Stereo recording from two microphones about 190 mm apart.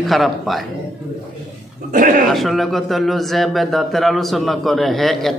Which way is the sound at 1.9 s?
45° right (ahead or behind).